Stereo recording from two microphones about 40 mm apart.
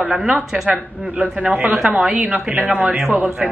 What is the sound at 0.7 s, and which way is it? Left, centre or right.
Speech, right.